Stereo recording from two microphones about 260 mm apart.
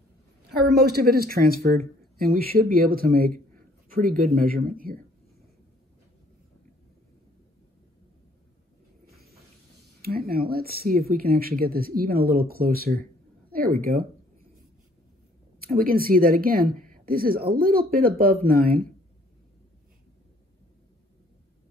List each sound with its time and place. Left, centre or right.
0.5 s speech: right
9.0 s a sound: right
10.0 s speech: right
15.6 s speech: right